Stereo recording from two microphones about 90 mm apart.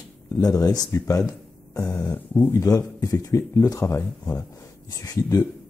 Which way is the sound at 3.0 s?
35° left (ahead or behind).